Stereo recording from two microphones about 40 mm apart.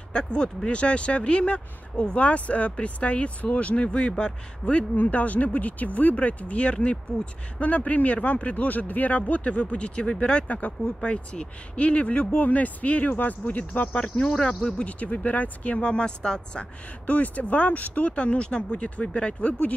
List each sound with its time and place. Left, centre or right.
0.1 s speech: left
10.5 s speech: left
14.0 s speech: left
14.9 s speech: left
17.0 s speech: left
18.1 s speech: left